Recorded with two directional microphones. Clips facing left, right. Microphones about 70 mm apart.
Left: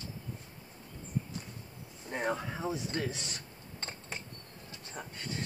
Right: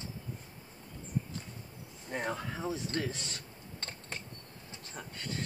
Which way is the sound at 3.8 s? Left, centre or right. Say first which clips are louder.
Left 1 dB; centre.